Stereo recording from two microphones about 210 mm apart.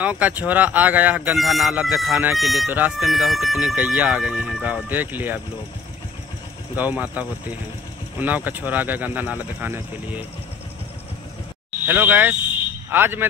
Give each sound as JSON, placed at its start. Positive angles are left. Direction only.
{"t": 0.0, "sound": "speech", "side_deg": -5}
{"t": 6.7, "sound": "speech", "side_deg": -10}
{"t": 11.8, "sound": "speech", "side_deg": -10}